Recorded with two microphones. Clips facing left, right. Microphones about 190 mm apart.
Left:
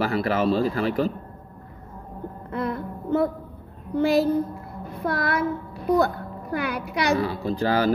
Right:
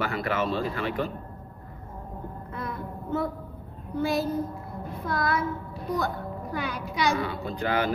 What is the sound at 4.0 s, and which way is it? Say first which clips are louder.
A child's voice: left 6 dB; 65° left (ahead or behind).